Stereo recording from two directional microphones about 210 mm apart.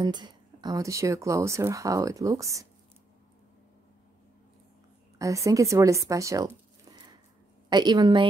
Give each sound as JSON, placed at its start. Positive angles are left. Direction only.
{"t": 0.0, "sound": "speech", "side_deg": -20}
{"t": 5.2, "sound": "speech", "side_deg": -15}
{"t": 7.7, "sound": "a woman's voice", "side_deg": -20}